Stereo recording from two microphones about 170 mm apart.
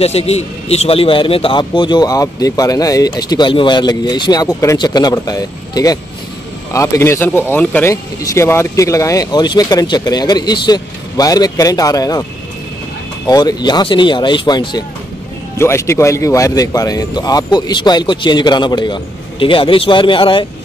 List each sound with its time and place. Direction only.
0.0 s speech: 35° left (ahead or behind); by 12.3 s 20° left (ahead or behind)
13.3 s speech: 25° left (ahead or behind)